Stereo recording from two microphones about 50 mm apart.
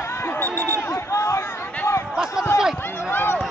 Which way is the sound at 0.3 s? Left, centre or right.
Left.